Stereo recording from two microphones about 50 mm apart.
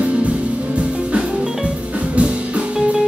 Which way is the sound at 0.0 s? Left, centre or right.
Right.